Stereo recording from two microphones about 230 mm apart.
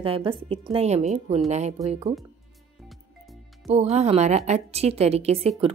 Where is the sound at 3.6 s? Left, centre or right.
Right.